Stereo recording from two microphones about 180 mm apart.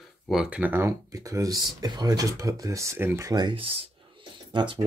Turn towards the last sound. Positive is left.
turn(degrees=-25)  # may be behind; listen again after turning